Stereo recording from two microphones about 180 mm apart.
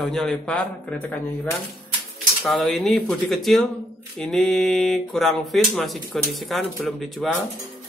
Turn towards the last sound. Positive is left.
turn(degrees=0)  # may be behind; listen again after turning